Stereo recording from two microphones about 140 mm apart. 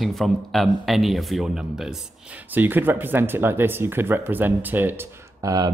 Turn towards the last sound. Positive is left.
turn(degrees=-30)  # may be behind; listen again after turning